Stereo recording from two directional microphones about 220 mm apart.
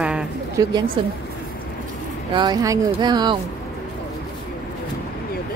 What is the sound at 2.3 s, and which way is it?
Speech, 20° right (ahead or behind).